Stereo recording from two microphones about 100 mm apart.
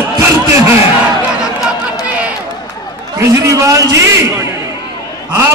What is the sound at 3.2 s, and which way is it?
A man's voice, 30° right (ahead or behind).